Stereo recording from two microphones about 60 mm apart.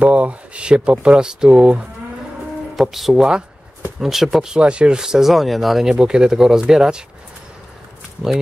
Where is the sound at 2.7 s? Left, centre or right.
Centre.